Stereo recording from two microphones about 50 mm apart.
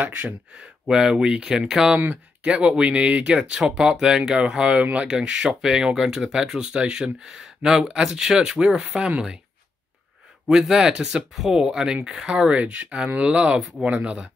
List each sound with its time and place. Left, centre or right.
0.6 s speech: centre
10.6 s speech: centre
12.4 s speech: right